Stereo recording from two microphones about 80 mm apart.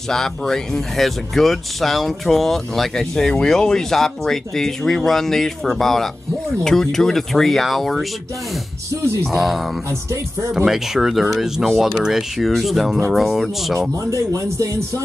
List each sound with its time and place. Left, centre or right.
0.1 s speech: centre
9.3 s speech: centre
14.1 s speech: right